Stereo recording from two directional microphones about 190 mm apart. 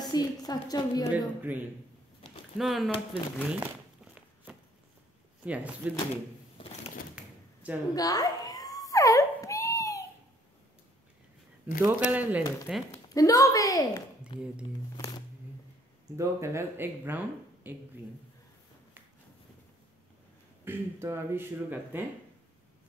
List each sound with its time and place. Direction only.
0.0 s a woman's voice: 20° left (ahead or behind)
1.1 s speech: 10° right (ahead or behind)
3.5 s crumpling: 5° right (ahead or behind)
5.4 s speech: 5° right (ahead or behind)
7.9 s a sound: 20° left (ahead or behind)
11.8 s speech: 10° right (ahead or behind)
12.9 s a woman's voice: 20° left (ahead or behind)
16.2 s speech: 15° right (ahead or behind)
20.6 s speech: 10° right (ahead or behind)